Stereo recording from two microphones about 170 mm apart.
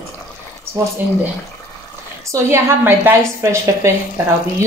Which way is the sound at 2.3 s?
15° right (ahead or behind).